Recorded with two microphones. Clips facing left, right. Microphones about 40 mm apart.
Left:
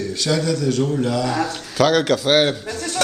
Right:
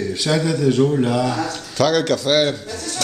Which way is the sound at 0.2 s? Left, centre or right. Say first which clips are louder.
Right 2 dB; centre.